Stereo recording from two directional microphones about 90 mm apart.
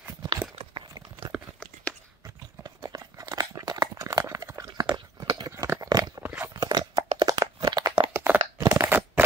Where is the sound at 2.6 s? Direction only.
40° right (ahead or behind).